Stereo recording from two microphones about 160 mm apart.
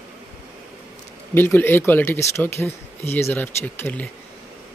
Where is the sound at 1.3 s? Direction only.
15° left (ahead or behind).